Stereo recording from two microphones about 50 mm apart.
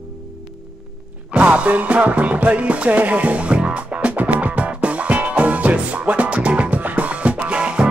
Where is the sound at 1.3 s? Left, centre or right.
Right.